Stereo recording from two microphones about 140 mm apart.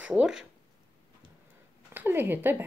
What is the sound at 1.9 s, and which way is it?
Speech, 15° right (ahead or behind).